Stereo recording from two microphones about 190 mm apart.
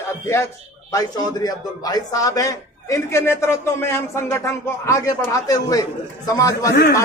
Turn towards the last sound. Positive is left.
turn(degrees=55)  # may be behind; listen again after turning